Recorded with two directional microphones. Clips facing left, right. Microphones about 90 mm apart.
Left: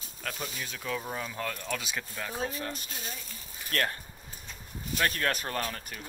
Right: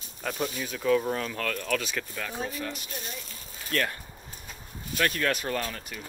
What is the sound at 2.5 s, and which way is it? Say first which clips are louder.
Speech: right 2 dB; 35° left (ahead or behind).